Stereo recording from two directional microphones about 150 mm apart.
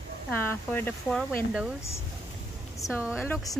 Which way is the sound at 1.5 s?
5° right (ahead or behind).